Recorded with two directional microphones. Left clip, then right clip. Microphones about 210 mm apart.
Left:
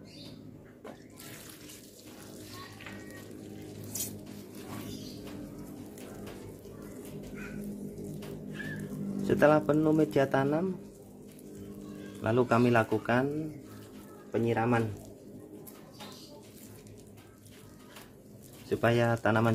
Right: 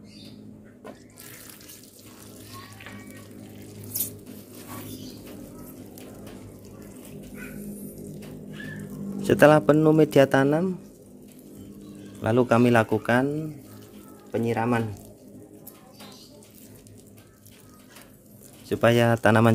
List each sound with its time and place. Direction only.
9.3 s a man's voice: 45° right (ahead or behind)
12.2 s a man's voice: 40° right (ahead or behind)
14.3 s speech: 40° right (ahead or behind)
18.7 s a man's voice: 45° right (ahead or behind)